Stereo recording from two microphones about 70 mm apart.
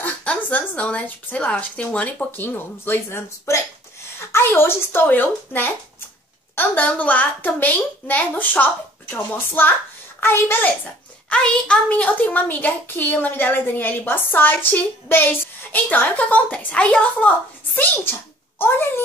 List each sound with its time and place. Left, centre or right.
0.0 s a woman's voice: centre
11.2 s a woman's voice: centre; by 19.0 s left